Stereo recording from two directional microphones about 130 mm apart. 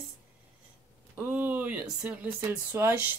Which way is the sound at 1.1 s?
15° right (ahead or behind).